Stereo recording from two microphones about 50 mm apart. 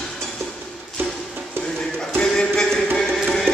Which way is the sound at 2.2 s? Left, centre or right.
Centre.